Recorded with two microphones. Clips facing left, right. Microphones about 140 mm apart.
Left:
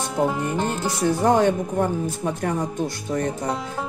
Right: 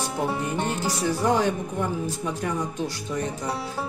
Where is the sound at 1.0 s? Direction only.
55° left (ahead or behind).